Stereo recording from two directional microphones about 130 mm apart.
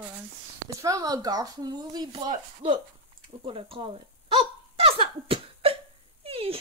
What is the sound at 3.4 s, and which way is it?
Hiccup, 45° right (ahead or behind).